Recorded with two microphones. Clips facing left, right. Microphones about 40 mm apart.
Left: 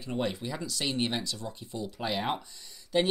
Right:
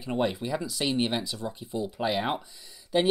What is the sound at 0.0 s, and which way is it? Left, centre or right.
Speech, centre.